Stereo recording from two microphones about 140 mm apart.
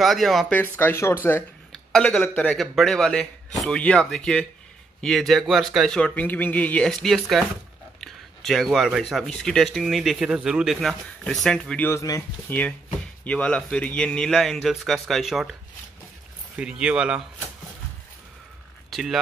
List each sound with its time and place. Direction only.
0.0 s speech: centre (ahead or behind)
0.6 s speech: 15° left (ahead or behind)
1.7 s a sound: 5° left (ahead or behind)
2.2 s speech: 10° left (ahead or behind)
8.0 s a sound: centre (ahead or behind)
9.1 s speech: 5° left (ahead or behind); by 12.2 s 20° left (ahead or behind)
12.4 s speech: 10° left (ahead or behind)
16.5 s speech: 5° right (ahead or behind)
18.9 s speech: centre (ahead or behind)